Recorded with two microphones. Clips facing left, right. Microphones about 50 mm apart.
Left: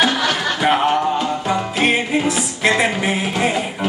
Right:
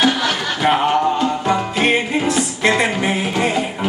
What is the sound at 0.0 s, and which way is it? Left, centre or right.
Music, centre.